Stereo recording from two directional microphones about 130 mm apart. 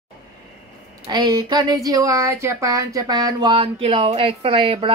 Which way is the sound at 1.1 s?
35° right (ahead or behind).